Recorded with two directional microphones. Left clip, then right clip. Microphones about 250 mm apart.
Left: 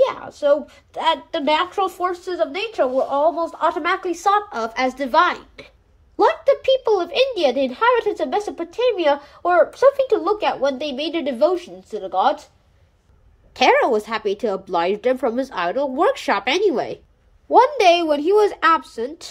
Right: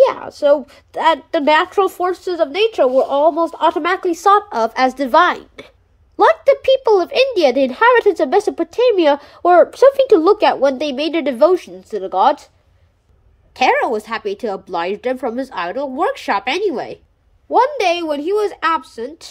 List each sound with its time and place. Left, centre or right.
0.0 s a woman's voice: centre
13.5 s a woman's voice: centre